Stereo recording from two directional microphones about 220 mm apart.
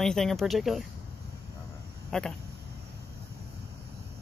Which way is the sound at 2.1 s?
Centre (ahead or behind).